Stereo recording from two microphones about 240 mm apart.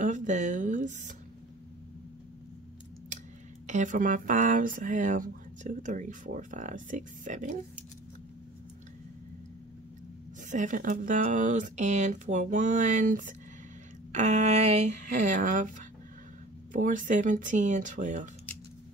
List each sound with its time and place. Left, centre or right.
0.0 s speech: right
3.6 s speech: right
10.5 s speech: right
16.7 s speech: right